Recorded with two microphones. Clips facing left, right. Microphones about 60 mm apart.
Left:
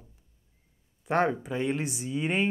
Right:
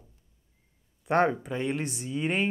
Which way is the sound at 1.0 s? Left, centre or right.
Centre.